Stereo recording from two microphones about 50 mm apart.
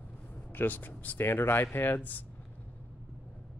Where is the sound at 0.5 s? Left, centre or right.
Left.